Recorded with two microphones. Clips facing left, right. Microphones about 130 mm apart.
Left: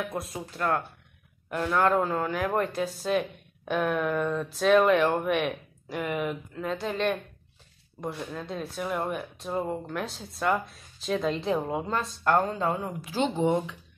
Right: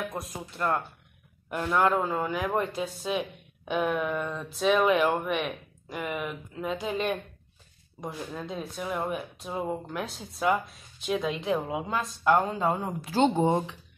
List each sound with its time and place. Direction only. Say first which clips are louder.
0.1 s speech: left 2 dB; centre (ahead or behind)
12.5 s speech: right 1 dB; 25° right (ahead or behind)